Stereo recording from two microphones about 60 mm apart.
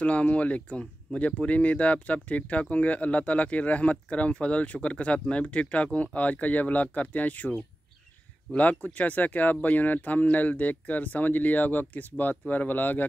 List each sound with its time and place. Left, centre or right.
0.0 s speech: left